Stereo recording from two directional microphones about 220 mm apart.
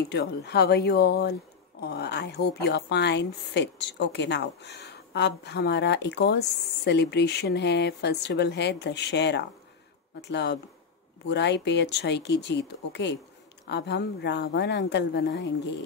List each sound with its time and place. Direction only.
0.1 s a woman's voice: 50° left (ahead or behind)